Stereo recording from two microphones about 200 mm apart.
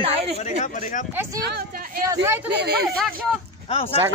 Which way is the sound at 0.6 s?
40° left (ahead or behind).